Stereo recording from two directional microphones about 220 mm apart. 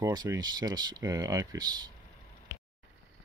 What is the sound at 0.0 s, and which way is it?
Speech, 15° right (ahead or behind).